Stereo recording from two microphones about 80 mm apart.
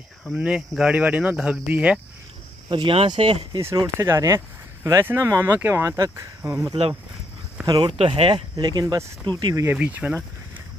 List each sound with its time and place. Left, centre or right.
0.3 s speech: centre
2.7 s speech: right
3.7 s speech: right
5.8 s speech: right
7.6 s speech: right
9.8 s speech: centre